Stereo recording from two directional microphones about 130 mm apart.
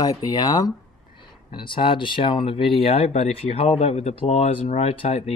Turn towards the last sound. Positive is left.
turn(degrees=55)  # may be behind; listen again after turning